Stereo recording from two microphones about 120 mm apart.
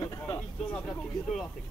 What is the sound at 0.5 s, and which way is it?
Speech, 5° left (ahead or behind).